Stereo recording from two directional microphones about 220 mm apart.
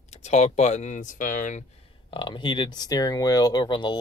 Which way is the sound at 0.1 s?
30° left (ahead or behind).